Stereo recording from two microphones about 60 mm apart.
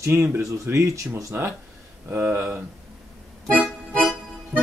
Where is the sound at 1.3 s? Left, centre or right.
Right.